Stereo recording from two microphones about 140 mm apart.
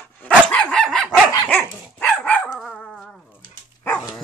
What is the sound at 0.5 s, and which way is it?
Dog, 5° left (ahead or behind).